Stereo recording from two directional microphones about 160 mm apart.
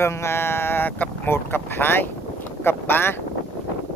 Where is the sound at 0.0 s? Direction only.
15° left (ahead or behind).